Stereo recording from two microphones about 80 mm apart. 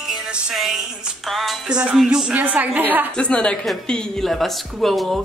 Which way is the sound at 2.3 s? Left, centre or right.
Centre.